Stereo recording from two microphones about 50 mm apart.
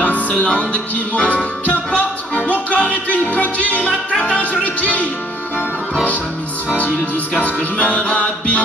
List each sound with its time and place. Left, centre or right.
0.0 s music: left
7.3 s music: left